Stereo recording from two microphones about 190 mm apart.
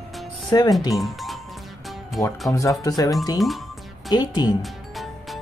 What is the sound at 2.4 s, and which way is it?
Speech, 15° left (ahead or behind).